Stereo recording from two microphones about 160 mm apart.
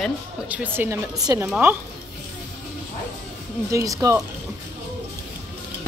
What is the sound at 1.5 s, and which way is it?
Speech, 10° right (ahead or behind).